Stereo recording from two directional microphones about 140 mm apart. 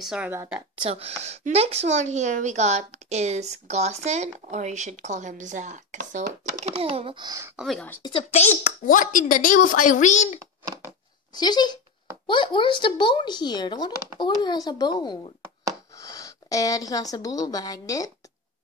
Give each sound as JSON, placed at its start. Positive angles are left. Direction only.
{"t": 0.0, "sound": "speech", "side_deg": -5}
{"t": 0.3, "sound": "speech", "side_deg": -20}
{"t": 0.8, "sound": "speech", "side_deg": -45}
{"t": 7.5, "sound": "speech", "side_deg": 0}
{"t": 8.0, "sound": "a woman's voice", "side_deg": 40}
{"t": 11.3, "sound": "a woman's voice", "side_deg": 30}